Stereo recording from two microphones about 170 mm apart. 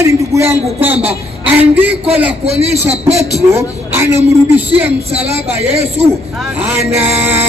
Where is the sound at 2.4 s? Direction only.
35° right (ahead or behind).